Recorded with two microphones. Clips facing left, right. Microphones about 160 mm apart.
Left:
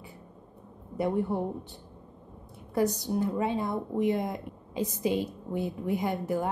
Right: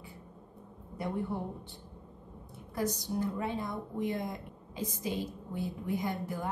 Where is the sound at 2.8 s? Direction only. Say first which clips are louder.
Left 6 dB; 20° left (ahead or behind).